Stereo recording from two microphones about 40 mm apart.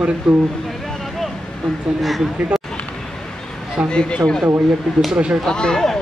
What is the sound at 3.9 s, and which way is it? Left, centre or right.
Speech, left.